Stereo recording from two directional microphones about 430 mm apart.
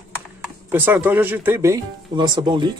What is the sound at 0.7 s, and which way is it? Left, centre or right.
Speech, centre.